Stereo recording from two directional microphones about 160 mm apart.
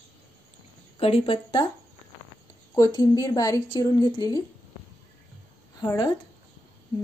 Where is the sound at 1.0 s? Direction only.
35° left (ahead or behind).